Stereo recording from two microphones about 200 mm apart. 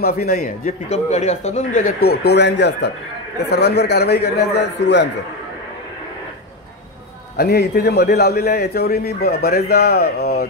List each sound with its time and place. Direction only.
0.0 s speech: 50° left (ahead or behind)
2.0 s a man's voice: 55° left (ahead or behind)
7.3 s a man's voice: 50° left (ahead or behind)